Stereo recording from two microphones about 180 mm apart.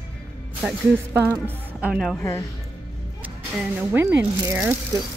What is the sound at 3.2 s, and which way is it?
Speech, 10° right (ahead or behind).